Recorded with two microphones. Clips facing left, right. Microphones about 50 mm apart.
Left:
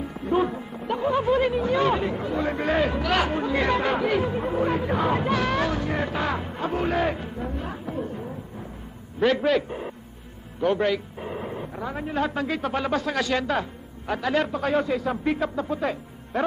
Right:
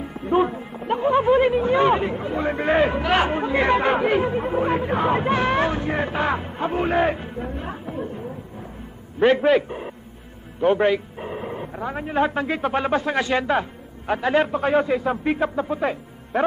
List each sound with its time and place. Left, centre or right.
0.0 s a sound: centre
0.8 s chatter: right
2.2 s a man's voice: centre
9.2 s speech: right
9.7 s a sound: centre
10.6 s speech: right
11.2 s speech: centre